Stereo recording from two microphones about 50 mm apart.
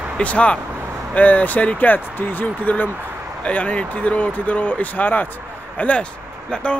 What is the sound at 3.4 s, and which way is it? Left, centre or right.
Speech, left.